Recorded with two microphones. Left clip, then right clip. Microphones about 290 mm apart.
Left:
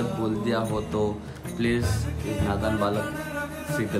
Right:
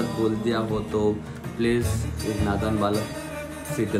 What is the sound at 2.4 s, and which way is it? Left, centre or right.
Speech, centre.